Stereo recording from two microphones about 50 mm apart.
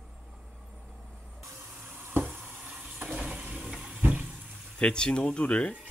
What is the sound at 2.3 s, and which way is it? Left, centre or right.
Frying, right.